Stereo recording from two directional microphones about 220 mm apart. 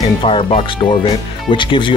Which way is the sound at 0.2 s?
25° left (ahead or behind).